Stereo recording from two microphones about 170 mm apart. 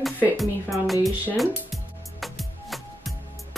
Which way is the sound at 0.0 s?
Centre (ahead or behind).